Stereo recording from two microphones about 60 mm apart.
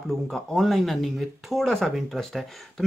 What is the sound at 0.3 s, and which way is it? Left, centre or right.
Speech, centre.